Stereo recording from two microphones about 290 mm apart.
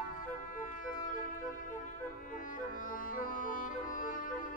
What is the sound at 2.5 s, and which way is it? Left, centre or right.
Music, left.